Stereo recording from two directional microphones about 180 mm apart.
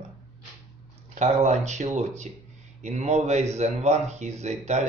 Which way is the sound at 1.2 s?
40° right (ahead or behind).